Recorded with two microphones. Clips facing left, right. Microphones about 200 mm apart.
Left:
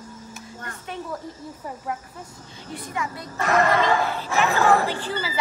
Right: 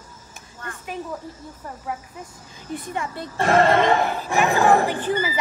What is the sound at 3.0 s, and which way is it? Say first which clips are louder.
Speech: right 4 dB; 30° right (ahead or behind).